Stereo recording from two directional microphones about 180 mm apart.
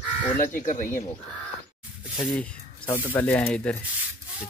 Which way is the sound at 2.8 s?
15° left (ahead or behind).